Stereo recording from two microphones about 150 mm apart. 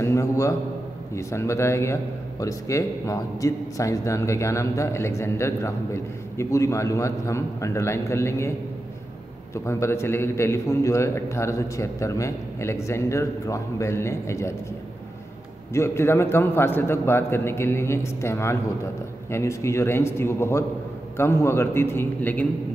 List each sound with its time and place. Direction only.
0.0 s a man's voice: 20° left (ahead or behind)
15.7 s a man's voice: 15° left (ahead or behind)